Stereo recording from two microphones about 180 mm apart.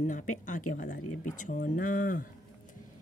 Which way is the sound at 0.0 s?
45° left (ahead or behind).